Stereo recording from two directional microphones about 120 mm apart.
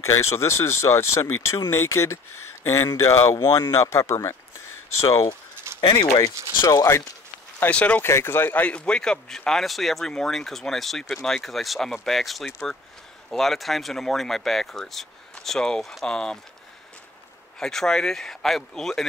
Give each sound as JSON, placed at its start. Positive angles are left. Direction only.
{"t": 0.0, "sound": "speech", "side_deg": 25}
{"t": 5.8, "sound": "speech", "side_deg": 40}
{"t": 7.6, "sound": "speech", "side_deg": 10}
{"t": 17.6, "sound": "speech", "side_deg": 5}